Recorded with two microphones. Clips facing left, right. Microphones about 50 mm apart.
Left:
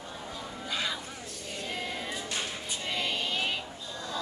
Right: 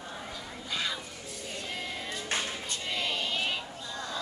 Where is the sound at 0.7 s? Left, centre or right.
Centre.